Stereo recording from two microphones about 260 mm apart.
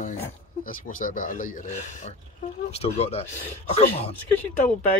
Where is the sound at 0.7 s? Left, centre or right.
Left.